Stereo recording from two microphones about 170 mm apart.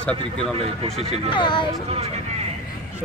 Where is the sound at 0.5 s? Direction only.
35° right (ahead or behind).